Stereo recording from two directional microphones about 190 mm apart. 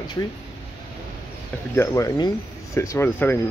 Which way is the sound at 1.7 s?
15° left (ahead or behind).